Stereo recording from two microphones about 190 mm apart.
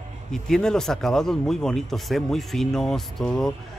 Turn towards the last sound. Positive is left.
turn(degrees=5)  # may be behind; listen again after turning